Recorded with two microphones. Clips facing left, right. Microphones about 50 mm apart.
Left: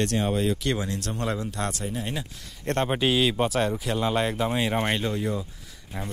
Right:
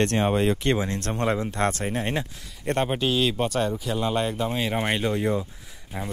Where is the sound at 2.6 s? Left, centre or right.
Centre.